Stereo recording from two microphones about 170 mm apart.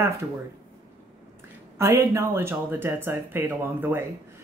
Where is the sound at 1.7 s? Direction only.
15° right (ahead or behind).